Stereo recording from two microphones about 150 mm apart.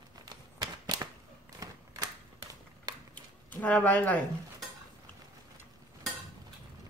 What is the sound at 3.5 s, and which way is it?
Speech, 10° left (ahead or behind).